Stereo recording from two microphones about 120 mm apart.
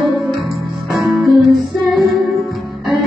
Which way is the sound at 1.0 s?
Centre (ahead or behind).